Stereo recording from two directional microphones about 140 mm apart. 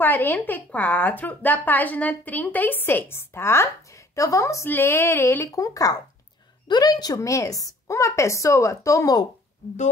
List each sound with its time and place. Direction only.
0.0 s a woman's voice: 15° left (ahead or behind)